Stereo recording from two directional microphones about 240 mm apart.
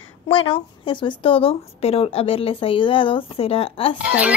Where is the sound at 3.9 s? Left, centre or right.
Centre.